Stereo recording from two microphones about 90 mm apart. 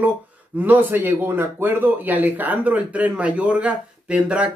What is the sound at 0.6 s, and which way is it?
Speech, 20° right (ahead or behind).